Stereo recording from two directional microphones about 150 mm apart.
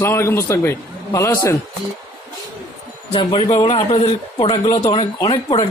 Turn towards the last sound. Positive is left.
turn(degrees=40)  # may be behind; listen again after turning